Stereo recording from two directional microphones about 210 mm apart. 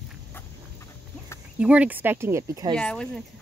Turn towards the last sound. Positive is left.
turn(degrees=0)  # may be behind; listen again after turning